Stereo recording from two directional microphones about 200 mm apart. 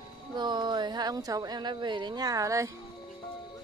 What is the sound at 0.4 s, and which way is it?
A woman's voice, 20° right (ahead or behind).